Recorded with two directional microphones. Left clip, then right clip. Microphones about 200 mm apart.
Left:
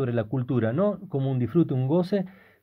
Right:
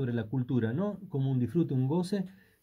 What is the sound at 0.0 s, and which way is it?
Speech, 45° left (ahead or behind).